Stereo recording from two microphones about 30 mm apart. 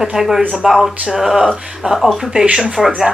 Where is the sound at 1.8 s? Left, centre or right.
Right.